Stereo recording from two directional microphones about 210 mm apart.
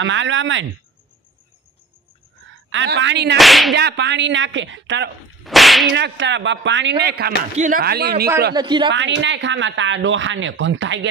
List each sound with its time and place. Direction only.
0.0 s speech: 65° right (ahead or behind)
2.7 s speech: 60° right (ahead or behind)
3.3 s whip: centre (ahead or behind)
3.7 s speech: 55° right (ahead or behind)
5.4 s whip: centre (ahead or behind)
5.9 s speech: 55° right (ahead or behind)
7.5 s speech: 40° right (ahead or behind)
8.5 s speech: 20° right (ahead or behind)
8.9 s speech: 60° right (ahead or behind)